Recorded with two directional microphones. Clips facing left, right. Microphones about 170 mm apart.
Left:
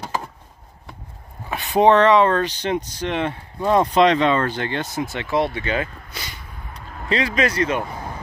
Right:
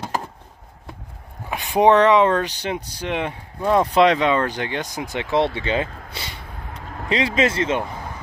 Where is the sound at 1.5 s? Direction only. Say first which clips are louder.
Even; 10° right (ahead or behind).